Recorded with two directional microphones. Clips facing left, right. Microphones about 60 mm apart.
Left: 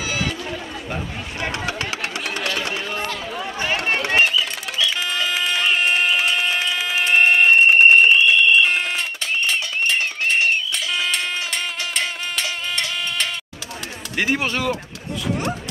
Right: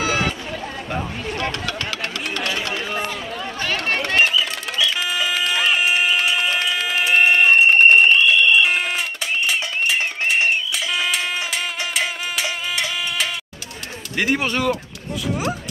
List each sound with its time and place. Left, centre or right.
0.0 s a sound: right
1.4 s chatter: centre
3.3 s run: centre
4.2 s music: centre
14.1 s speech: centre